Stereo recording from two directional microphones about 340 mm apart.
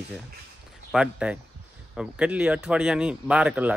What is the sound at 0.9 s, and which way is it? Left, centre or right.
Speech, centre.